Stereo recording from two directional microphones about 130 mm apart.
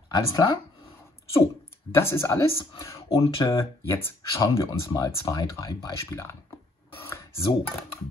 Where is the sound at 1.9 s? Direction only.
20° left (ahead or behind).